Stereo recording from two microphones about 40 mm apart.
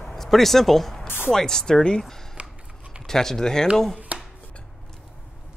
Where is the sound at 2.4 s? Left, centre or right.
Right.